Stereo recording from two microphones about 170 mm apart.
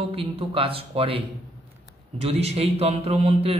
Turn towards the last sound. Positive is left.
turn(degrees=-35)  # may be behind; listen again after turning